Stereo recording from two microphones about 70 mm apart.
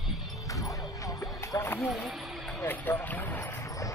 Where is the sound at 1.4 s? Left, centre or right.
Left.